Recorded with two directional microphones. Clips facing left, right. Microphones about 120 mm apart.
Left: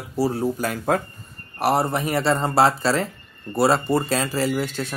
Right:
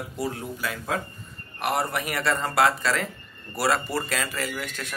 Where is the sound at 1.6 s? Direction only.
30° left (ahead or behind).